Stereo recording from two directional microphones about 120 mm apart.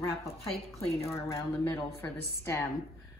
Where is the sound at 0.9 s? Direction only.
25° left (ahead or behind).